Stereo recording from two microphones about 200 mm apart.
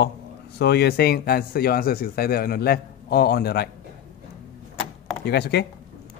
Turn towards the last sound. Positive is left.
turn(degrees=55)  # may be behind; listen again after turning